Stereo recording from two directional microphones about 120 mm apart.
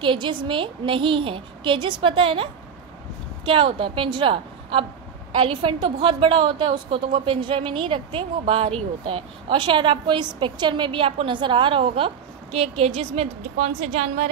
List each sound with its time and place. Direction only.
0.0 s a woman's voice: 45° right (ahead or behind); by 14.3 s 60° right (ahead or behind)